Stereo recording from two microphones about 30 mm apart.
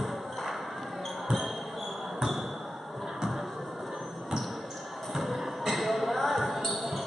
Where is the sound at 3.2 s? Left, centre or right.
Centre.